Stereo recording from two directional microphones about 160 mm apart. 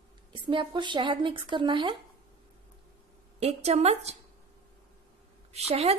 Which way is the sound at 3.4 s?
40° right (ahead or behind).